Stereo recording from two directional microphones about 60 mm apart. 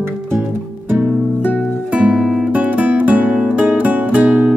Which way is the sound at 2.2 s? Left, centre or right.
Centre.